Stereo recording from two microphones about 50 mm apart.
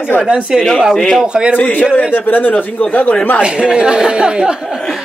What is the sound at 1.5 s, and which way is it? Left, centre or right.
Speech, left.